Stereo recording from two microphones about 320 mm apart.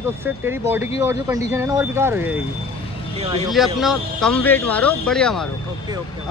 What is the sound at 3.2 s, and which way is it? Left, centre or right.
Speech, centre.